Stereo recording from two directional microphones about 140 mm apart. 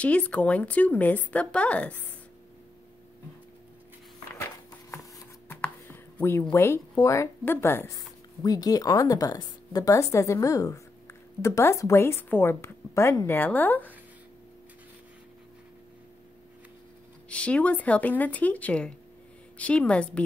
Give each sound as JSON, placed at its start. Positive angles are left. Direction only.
{"t": 0.0, "sound": "a woman's voice", "side_deg": 10}
{"t": 4.4, "sound": "a sound", "side_deg": 20}
{"t": 6.5, "sound": "a woman's voice", "side_deg": 20}
{"t": 17.3, "sound": "a woman's voice", "side_deg": 10}